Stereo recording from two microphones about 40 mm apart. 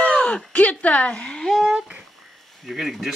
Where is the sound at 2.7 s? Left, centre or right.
Centre.